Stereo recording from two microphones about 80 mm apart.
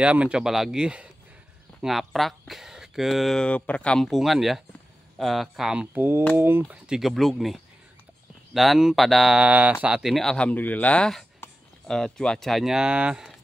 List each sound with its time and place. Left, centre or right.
0.0 s speech: centre
3.3 s speech: centre
4.0 s speech: centre
5.9 s speech: right
6.7 s speech: centre
10.1 s speech: centre
11.9 s speech: centre